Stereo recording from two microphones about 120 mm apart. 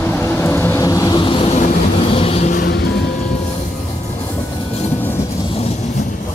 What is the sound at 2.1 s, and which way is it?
Vehicle, 55° left (ahead or behind).